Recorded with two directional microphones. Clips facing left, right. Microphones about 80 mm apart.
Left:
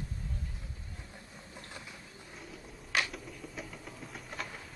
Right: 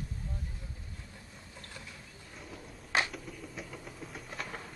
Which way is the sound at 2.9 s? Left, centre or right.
Right.